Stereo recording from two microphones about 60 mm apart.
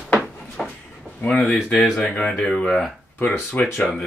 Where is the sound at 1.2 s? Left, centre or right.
Left.